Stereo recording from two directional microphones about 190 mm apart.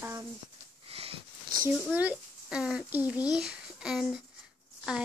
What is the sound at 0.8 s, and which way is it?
Sniff, 30° right (ahead or behind).